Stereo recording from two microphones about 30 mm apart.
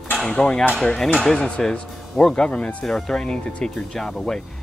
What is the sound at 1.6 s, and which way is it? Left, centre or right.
Speech, centre.